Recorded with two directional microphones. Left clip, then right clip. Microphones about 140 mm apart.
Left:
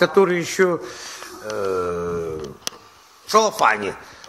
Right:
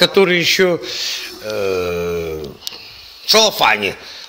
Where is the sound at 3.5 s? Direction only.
30° right (ahead or behind).